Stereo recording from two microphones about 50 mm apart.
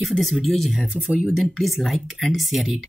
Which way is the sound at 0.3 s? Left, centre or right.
Centre.